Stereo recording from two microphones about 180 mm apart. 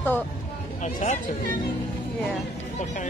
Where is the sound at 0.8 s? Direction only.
40° left (ahead or behind).